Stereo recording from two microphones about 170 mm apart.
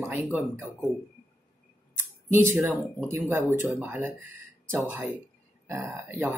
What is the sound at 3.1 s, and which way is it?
Speech, 15° right (ahead or behind).